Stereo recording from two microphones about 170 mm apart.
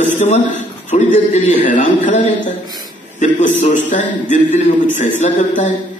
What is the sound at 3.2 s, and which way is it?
A man's voice, 45° left (ahead or behind).